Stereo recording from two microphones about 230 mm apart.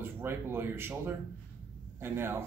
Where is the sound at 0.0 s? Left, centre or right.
Centre.